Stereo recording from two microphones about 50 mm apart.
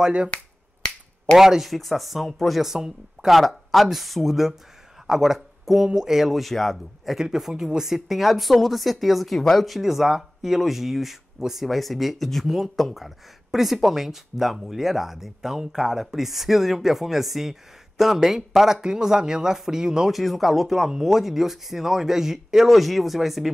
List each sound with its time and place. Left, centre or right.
0.0 s speech: centre
1.4 s speech: centre
9.8 s speech: centre
20.2 s speech: centre